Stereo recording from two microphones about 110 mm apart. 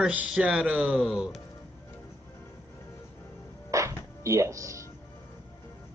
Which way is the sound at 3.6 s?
30° right (ahead or behind).